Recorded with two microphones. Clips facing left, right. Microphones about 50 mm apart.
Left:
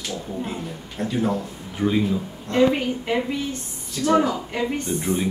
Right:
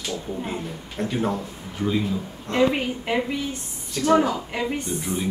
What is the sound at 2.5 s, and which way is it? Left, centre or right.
Speech, centre.